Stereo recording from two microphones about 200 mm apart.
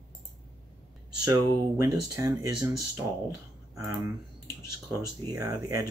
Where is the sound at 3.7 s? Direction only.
15° right (ahead or behind).